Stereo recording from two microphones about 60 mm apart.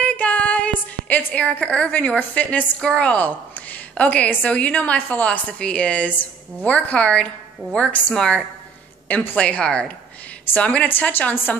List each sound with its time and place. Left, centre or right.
0.0 s a woman's voice: left
9.1 s a woman's voice: left